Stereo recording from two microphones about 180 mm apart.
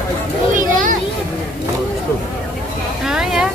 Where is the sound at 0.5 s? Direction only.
45° right (ahead or behind).